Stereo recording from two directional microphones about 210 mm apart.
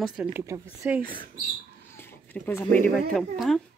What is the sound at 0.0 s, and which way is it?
Speech, 5° right (ahead or behind).